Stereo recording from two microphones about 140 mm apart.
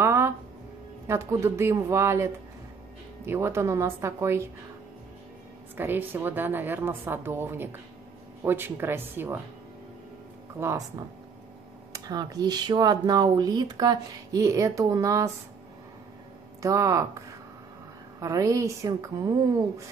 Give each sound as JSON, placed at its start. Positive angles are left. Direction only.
{"t": 0.0, "sound": "music", "side_deg": -20}
{"t": 1.0, "sound": "speech", "side_deg": -20}
{"t": 5.8, "sound": "speech", "side_deg": -15}
{"t": 10.6, "sound": "speech", "side_deg": -20}
{"t": 16.6, "sound": "speech", "side_deg": -20}
{"t": 18.2, "sound": "speech", "side_deg": -20}